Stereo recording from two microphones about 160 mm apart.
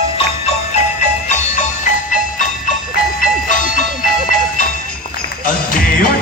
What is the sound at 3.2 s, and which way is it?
Music, 55° left (ahead or behind).